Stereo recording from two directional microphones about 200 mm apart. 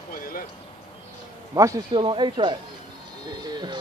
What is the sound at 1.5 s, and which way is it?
Speech, 15° right (ahead or behind).